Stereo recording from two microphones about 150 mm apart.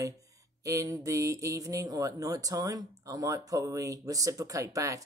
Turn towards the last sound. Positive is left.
turn(degrees=-20)  # may be behind; listen again after turning